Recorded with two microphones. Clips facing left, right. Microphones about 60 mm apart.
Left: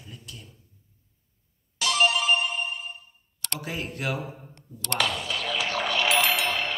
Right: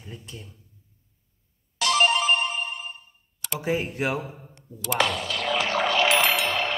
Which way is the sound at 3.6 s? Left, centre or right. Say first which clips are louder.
Right 6 dB; right.